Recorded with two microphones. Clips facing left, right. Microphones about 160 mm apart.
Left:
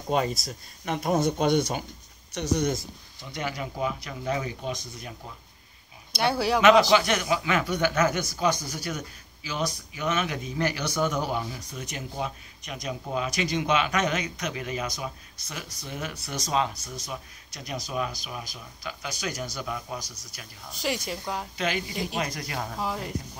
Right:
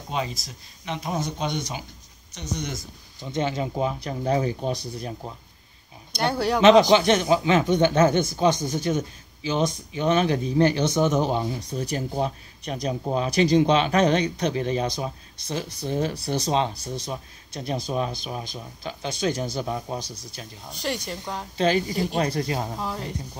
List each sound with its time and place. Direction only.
0.1 s speech: 50° left (ahead or behind)
2.3 s speech: 65° left (ahead or behind)
3.2 s speech: 25° right (ahead or behind)
6.1 s speech: 5° left (ahead or behind)
6.6 s speech: 20° right (ahead or behind)
20.8 s speech: 5° left (ahead or behind)
21.5 s speech: 35° right (ahead or behind)
22.8 s speech: 5° left (ahead or behind)